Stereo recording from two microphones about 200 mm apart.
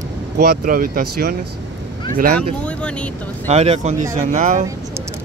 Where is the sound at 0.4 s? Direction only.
50° right (ahead or behind).